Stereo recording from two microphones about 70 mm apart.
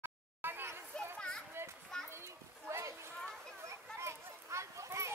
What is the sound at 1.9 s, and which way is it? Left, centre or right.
Children playing, centre.